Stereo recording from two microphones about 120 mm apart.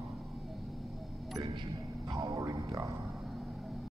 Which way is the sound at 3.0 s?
Centre (ahead or behind).